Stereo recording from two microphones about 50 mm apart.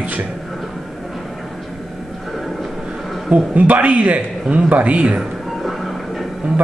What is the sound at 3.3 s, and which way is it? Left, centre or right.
A man's voice, right.